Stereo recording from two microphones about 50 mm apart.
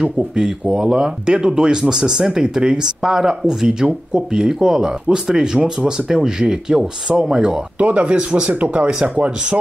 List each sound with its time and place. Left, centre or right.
0.0 s speech: centre